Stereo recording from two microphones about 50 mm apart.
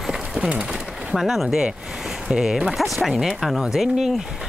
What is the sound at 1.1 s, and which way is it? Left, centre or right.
Speech, centre.